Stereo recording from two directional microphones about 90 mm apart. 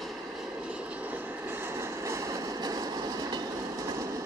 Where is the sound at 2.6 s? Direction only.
45° right (ahead or behind).